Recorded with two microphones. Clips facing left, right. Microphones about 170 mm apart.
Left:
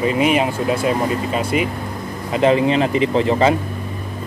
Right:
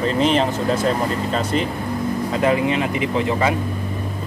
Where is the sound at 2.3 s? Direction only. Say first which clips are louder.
Left 5 dB; 25° left (ahead or behind).